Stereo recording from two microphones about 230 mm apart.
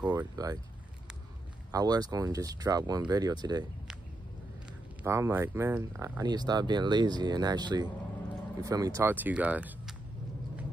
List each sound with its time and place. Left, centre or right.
0.0 s speech: centre
1.7 s speech: centre
5.0 s speech: centre